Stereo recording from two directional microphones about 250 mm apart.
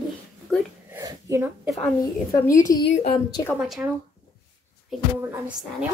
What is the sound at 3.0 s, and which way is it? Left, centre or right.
Speech, centre.